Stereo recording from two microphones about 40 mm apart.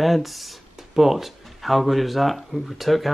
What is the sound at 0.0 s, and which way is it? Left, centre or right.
Speech, centre.